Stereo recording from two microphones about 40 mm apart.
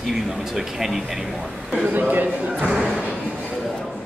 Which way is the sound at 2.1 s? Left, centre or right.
Right.